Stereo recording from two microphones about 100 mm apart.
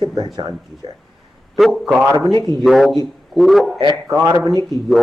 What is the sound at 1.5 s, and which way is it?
Speech, centre (ahead or behind).